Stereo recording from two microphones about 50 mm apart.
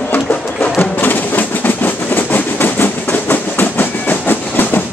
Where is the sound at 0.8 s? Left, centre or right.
Left.